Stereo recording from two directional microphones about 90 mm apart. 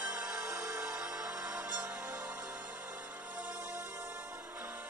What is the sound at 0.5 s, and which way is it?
Music, 30° right (ahead or behind).